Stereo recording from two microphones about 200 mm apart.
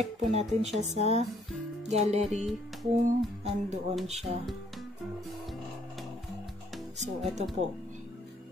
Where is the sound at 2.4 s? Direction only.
Centre (ahead or behind).